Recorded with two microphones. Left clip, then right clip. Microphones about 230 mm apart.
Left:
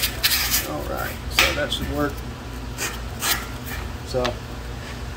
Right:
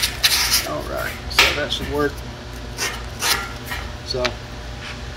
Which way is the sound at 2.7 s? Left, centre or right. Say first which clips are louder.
Right 4 dB; centre.